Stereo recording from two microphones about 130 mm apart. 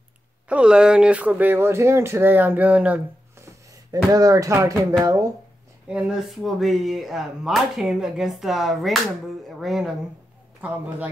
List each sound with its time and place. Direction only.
0.5 s speech: 10° right (ahead or behind)
3.4 s speech: 25° right (ahead or behind)
5.9 s speech: 5° right (ahead or behind)